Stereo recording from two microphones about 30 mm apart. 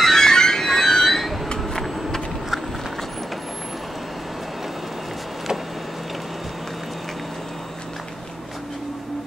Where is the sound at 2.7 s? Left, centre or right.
Centre.